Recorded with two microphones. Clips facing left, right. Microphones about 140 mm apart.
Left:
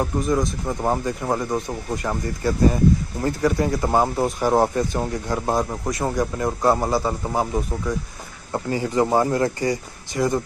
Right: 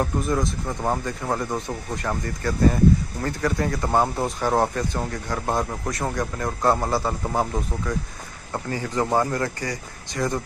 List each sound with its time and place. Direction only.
0.0 s a man's voice: centre (ahead or behind)
0.7 s speech: 10° left (ahead or behind)
3.8 s speech: 5° left (ahead or behind)
5.5 s a man's voice: 5° left (ahead or behind)
8.5 s speech: 20° left (ahead or behind)
10.1 s speech: 10° left (ahead or behind)